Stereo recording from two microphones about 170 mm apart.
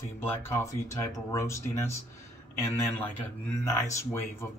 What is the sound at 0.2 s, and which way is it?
Speech, 15° left (ahead or behind).